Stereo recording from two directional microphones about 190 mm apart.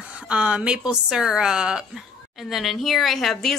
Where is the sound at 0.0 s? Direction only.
5° right (ahead or behind).